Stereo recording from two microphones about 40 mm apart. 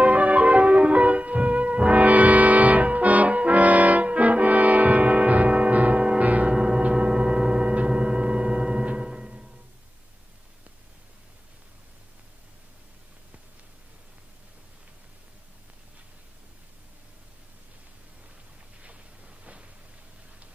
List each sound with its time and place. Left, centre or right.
0.0 s music: right
6.5 s gong: centre
8.9 s music: centre
18.8 s a sound: right